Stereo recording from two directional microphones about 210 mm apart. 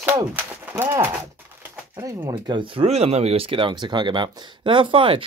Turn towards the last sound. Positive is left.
turn(degrees=-25)  # may be behind; listen again after turning